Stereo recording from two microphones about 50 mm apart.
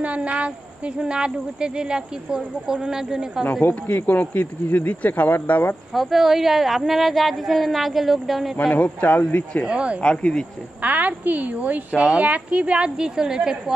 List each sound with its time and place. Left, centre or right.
0.0 s speech: right; by 3.4 s centre
3.6 s speech: left
5.9 s a woman's voice: centre
8.7 s speech: left
9.3 s speech: left
9.7 s speech: right
10.0 s speech: left
10.8 s a woman's voice: right; by 13.7 s centre